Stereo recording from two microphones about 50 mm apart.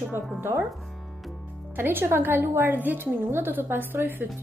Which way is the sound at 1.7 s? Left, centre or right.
Right.